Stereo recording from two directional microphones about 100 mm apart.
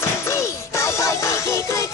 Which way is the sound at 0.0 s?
30° left (ahead or behind).